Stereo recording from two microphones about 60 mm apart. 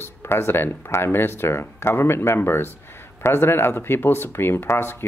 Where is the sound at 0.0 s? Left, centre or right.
Left.